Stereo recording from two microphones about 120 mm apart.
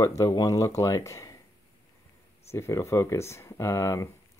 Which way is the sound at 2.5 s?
25° left (ahead or behind).